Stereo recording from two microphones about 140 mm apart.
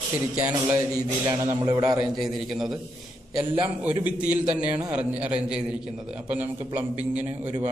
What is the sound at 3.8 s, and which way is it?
A man's voice, 10° right (ahead or behind).